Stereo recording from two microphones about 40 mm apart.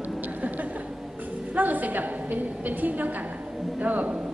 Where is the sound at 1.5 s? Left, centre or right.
Right.